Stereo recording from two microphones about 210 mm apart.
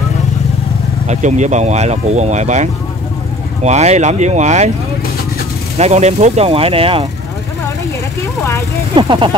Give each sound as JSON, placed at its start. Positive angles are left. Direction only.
{"t": 1.0, "sound": "speech", "side_deg": -35}
{"t": 5.8, "sound": "speech", "side_deg": -30}
{"t": 8.9, "sound": "speech", "side_deg": -25}